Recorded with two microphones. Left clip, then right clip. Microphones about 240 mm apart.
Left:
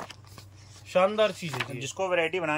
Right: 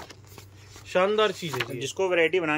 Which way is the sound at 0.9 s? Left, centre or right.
Centre.